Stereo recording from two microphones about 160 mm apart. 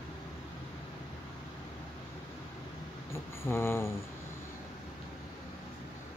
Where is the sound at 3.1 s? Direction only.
15° left (ahead or behind).